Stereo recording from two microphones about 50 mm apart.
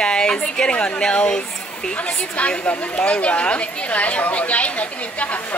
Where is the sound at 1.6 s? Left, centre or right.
Centre.